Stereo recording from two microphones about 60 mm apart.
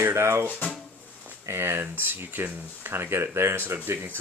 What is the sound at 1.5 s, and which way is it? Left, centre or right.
Speech, right.